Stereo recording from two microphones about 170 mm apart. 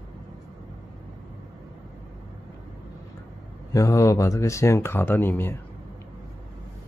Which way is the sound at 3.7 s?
20° left (ahead or behind).